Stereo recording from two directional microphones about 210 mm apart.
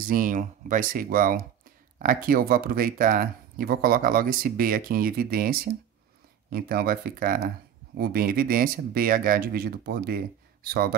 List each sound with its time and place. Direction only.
0.1 s speech: 40° right (ahead or behind)